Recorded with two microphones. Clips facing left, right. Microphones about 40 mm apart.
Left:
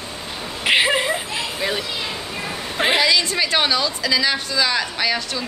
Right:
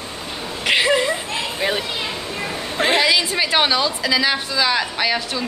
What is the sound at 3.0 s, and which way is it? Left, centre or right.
A woman's voice, centre.